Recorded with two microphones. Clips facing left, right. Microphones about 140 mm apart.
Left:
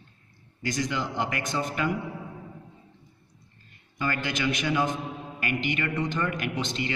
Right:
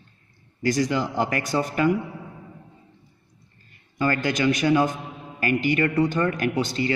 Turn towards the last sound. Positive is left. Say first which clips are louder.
# right 7 dB
turn(degrees=-40)  # may be behind; listen again after turning